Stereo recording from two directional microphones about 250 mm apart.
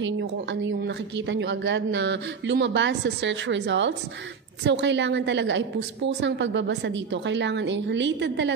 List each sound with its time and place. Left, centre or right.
0.0 s a woman's voice: right